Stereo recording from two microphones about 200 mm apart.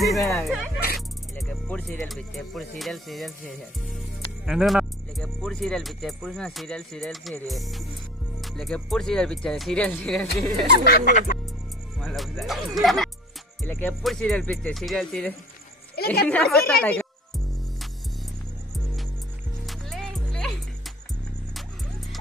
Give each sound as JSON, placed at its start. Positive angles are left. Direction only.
{"t": 0.0, "sound": "speech", "side_deg": 0}
{"t": 10.9, "sound": "speech", "side_deg": 45}
{"t": 12.0, "sound": "a woman's voice", "side_deg": 0}
{"t": 19.6, "sound": "music", "side_deg": 0}